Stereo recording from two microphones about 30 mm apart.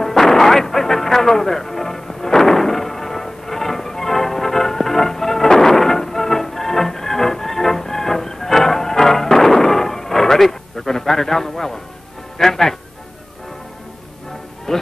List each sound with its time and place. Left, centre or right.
0.0 s artillery fire: centre
12.4 s a man's voice: centre
14.7 s music: centre